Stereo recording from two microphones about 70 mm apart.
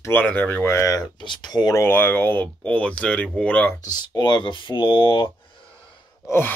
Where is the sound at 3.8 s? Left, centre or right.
Left.